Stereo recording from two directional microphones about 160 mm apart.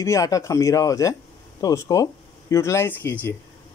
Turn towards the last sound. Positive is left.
turn(degrees=15)  # may be behind; listen again after turning